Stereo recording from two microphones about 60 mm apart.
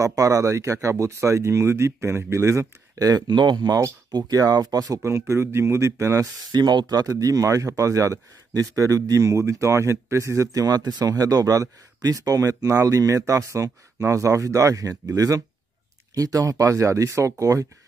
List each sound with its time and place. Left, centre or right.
0.0 s speech: right
3.0 s speech: right
5.3 s speech: right
6.9 s speech: right
10.5 s speech: right
13.3 s speech: right